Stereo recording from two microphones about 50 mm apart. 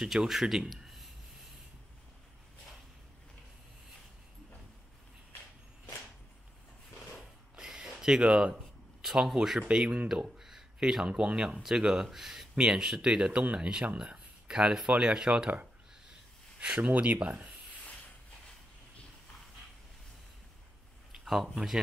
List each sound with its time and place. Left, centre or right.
0.0 s speech: centre
7.5 s a sound: centre
9.0 s speech: centre
16.5 s speech: right
21.1 s speech: centre